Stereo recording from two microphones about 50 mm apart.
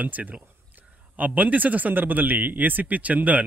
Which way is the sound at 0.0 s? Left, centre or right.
Right.